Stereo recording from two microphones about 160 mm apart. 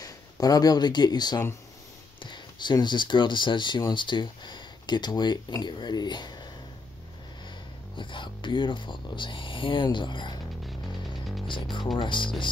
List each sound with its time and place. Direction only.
0.0 s speech: 25° left (ahead or behind)
8.0 s speech: 30° left (ahead or behind)
11.4 s speech: 30° left (ahead or behind)